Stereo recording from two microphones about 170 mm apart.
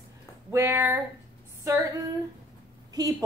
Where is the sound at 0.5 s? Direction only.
10° right (ahead or behind).